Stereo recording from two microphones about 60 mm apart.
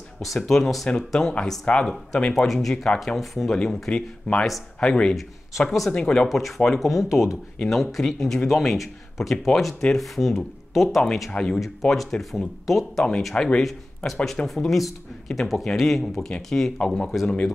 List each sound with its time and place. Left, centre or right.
0.2 s speech: centre
1.7 s speech: left
2.4 s speech: centre
2.7 s speech: centre
3.2 s speech: centre
3.5 s speech: centre
5.1 s speech: centre
5.9 s speech: centre
6.2 s speech: centre
11.3 s speech: centre
11.6 s speech: centre
13.2 s speech: centre